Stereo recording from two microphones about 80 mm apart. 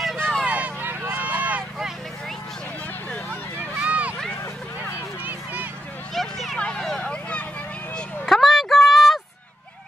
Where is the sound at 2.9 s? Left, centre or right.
Left.